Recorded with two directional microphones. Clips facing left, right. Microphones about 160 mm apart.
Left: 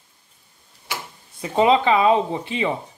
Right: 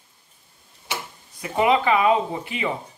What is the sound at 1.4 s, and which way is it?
Speech, 25° left (ahead or behind).